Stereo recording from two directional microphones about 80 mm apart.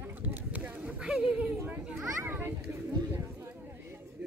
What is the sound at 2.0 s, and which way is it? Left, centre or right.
Speech, right.